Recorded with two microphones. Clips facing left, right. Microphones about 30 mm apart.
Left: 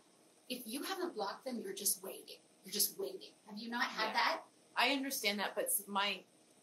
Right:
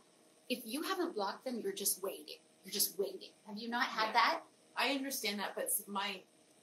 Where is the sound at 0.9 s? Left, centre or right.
Centre.